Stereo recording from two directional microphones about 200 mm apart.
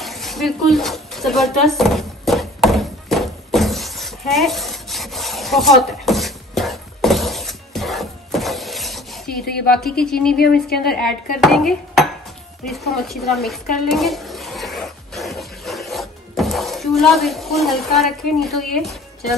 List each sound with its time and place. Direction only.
0.0 s a sound: centre (ahead or behind)
9.4 s a woman's voice: 50° left (ahead or behind)
9.8 s a woman's voice: centre (ahead or behind)
10.3 s a woman's voice: 50° left (ahead or behind)
10.9 s a woman's voice: centre (ahead or behind)
11.4 s dishes: centre (ahead or behind)